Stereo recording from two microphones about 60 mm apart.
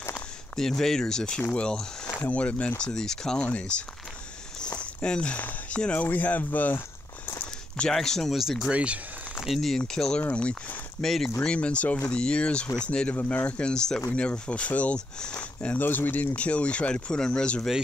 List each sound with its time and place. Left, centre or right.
0.6 s speech: centre
2.8 s speech: centre
3.4 s speech: left
7.9 s speech: centre
8.7 s speech: right
9.6 s speech: centre
11.0 s speech: centre
11.4 s speech: centre
13.1 s speech: left